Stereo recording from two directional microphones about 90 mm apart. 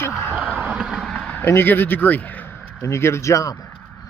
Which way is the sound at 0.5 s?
15° right (ahead or behind).